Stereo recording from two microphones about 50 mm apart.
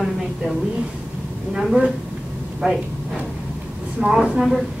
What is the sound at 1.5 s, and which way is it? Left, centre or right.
A woman's voice, centre.